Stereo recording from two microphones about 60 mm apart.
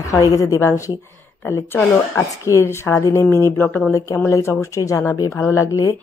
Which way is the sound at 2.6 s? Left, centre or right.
Left.